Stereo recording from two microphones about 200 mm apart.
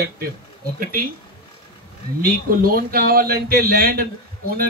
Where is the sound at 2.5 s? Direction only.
45° right (ahead or behind).